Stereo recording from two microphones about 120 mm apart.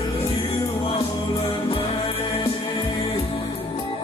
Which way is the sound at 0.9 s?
50° left (ahead or behind).